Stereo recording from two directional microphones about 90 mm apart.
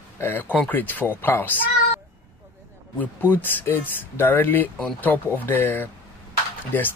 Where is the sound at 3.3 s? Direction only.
20° left (ahead or behind).